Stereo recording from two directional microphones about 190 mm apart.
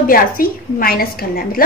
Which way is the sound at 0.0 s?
50° left (ahead or behind).